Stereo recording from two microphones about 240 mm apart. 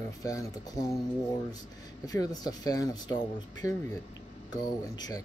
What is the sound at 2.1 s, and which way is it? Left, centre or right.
Speech, centre.